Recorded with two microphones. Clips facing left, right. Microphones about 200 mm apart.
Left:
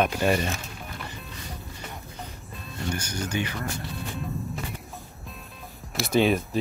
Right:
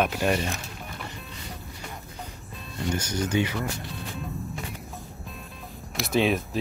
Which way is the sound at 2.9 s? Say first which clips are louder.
Right 5 dB; 20° right (ahead or behind).